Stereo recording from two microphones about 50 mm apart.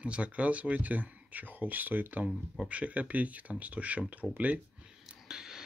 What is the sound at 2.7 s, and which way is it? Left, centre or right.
Speech, right.